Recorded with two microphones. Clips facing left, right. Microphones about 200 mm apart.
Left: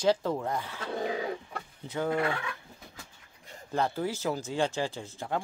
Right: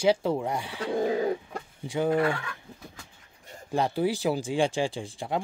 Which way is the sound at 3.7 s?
15° right (ahead or behind).